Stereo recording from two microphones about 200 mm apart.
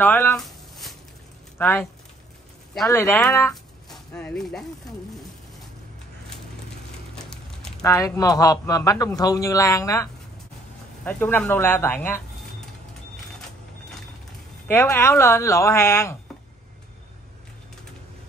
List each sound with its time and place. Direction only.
0.0 s a sound: 10° left (ahead or behind)
1.6 s speech: 10° left (ahead or behind)
3.3 s speech: 15° left (ahead or behind)
7.8 s speech: 15° left (ahead or behind)
11.1 s speech: 10° left (ahead or behind)
14.7 s speech: 10° left (ahead or behind)